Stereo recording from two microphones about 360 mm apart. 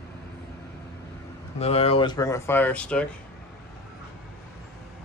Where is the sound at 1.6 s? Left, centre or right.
Centre.